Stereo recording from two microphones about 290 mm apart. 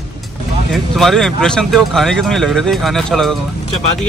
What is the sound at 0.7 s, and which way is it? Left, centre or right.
Speech, centre.